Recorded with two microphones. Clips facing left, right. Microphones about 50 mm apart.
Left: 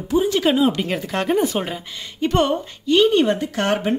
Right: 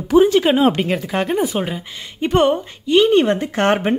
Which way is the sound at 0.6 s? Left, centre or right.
Right.